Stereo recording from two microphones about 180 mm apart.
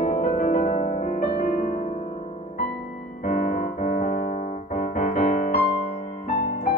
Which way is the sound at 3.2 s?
45° left (ahead or behind).